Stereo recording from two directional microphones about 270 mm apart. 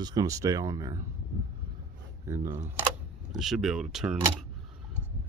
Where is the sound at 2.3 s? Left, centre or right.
Centre.